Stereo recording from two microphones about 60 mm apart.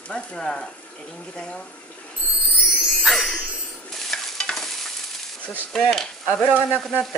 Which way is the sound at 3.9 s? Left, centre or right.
Centre.